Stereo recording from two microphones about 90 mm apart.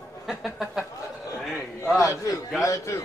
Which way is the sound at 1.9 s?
30° left (ahead or behind).